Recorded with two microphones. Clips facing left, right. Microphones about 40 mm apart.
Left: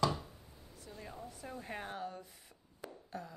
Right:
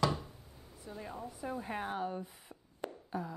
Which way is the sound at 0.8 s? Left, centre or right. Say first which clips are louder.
Right 5 dB; centre.